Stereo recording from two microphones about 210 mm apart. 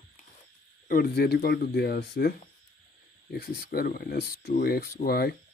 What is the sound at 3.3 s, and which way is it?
Speech, 45° left (ahead or behind).